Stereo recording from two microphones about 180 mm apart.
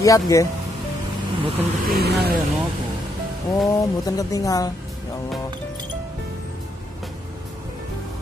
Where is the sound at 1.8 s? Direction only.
60° right (ahead or behind).